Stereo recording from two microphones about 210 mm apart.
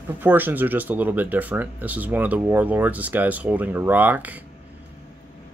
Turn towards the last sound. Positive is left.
turn(degrees=-10)  # may be behind; listen again after turning